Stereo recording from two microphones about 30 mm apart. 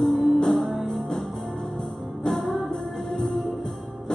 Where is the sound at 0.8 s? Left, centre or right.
Centre.